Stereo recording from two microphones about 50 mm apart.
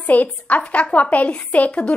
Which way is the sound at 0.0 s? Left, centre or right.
Left.